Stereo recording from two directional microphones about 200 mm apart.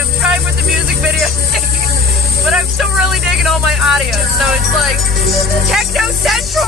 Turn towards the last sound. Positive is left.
turn(degrees=0)  # may be behind; listen again after turning